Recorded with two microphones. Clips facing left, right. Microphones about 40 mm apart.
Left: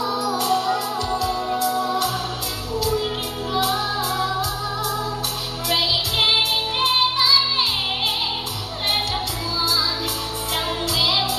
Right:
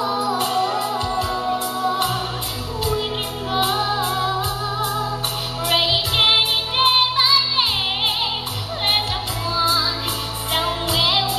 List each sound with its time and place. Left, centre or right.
0.0 s music: right
3.5 s music: right
9.6 s music: right